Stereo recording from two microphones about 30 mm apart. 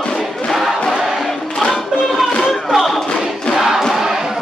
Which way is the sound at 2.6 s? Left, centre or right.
Centre.